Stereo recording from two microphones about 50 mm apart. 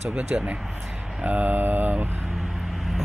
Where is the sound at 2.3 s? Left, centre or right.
Centre.